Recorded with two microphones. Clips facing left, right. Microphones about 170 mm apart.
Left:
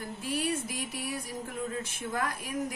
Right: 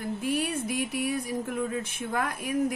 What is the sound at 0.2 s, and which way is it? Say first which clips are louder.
Speech: right 1 dB; 55° right (ahead or behind).